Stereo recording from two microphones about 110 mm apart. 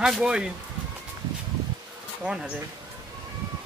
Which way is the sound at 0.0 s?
10° right (ahead or behind).